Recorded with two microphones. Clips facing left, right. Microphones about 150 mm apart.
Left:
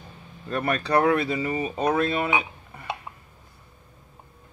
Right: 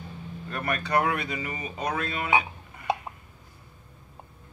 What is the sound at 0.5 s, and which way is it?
Speech, 30° left (ahead or behind).